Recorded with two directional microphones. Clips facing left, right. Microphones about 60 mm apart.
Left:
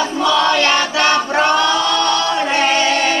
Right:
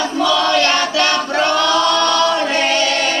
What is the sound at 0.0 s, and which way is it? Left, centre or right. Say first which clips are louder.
Choir: left 1 dB; left.